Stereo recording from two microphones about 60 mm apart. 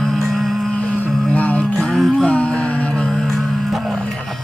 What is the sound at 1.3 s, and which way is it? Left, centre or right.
Music, left.